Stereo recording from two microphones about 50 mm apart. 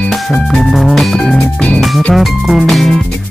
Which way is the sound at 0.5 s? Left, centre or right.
Centre.